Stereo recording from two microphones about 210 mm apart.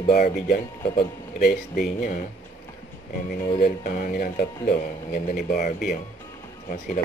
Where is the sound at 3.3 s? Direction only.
45° left (ahead or behind).